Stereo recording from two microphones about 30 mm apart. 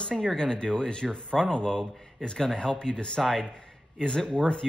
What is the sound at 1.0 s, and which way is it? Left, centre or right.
Speech, centre.